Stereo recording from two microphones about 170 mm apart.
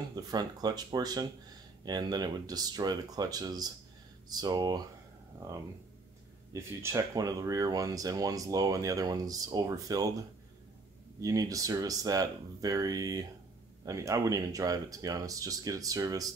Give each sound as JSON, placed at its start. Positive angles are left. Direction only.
{"t": 0.1, "sound": "speech", "side_deg": -25}
{"t": 6.5, "sound": "speech", "side_deg": -15}
{"t": 11.1, "sound": "speech", "side_deg": -20}